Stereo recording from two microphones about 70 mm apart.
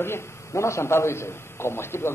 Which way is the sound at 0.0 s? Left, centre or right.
Left.